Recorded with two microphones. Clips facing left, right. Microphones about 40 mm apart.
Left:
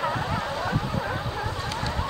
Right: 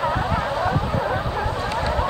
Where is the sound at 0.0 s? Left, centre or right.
Centre.